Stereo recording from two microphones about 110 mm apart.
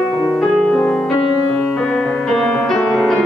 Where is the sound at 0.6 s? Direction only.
10° left (ahead or behind).